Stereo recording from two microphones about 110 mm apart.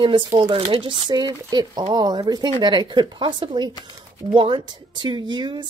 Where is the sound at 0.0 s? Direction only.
50° right (ahead or behind).